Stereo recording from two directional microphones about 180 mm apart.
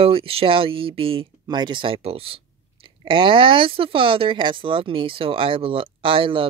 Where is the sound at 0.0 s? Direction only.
30° right (ahead or behind).